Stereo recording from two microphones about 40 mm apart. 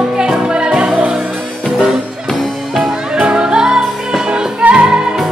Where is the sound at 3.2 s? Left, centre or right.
Right.